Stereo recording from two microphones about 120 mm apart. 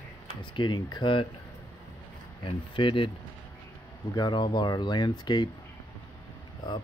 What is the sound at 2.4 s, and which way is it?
Speech, 45° left (ahead or behind).